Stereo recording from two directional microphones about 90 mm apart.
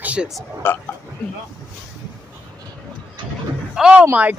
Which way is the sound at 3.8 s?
10° right (ahead or behind).